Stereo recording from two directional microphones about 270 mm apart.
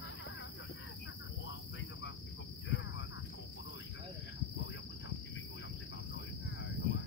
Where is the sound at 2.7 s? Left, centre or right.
Left.